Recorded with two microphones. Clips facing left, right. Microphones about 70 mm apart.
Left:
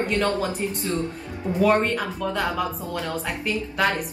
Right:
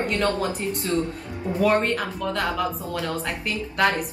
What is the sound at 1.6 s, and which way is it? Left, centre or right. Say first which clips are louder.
Speech: left 1 dB; centre.